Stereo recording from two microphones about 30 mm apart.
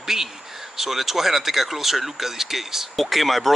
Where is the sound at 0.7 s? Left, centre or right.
Centre.